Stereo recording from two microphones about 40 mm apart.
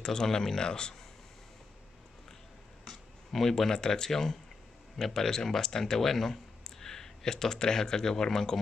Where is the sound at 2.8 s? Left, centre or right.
Centre.